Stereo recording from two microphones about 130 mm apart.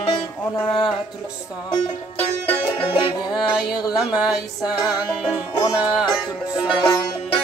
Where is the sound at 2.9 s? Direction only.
35° left (ahead or behind).